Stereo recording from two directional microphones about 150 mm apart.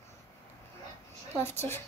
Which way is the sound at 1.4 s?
15° left (ahead or behind).